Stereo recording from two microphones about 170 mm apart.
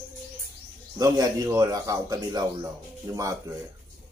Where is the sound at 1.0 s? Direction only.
20° right (ahead or behind).